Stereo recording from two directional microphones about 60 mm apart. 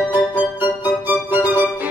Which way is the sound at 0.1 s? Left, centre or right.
Right.